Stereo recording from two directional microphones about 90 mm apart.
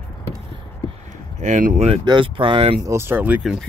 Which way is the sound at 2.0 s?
65° right (ahead or behind).